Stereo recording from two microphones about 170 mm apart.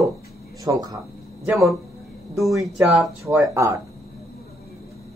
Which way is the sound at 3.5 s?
20° right (ahead or behind).